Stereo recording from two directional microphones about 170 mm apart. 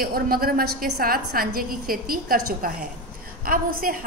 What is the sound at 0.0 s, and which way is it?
A woman's voice, 60° right (ahead or behind).